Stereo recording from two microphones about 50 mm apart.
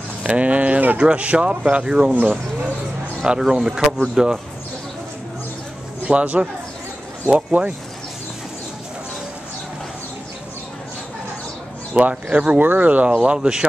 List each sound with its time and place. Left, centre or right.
0.2 s speech: right
3.3 s speech: centre
6.0 s speech: right
11.9 s speech: right
13.1 s speech: centre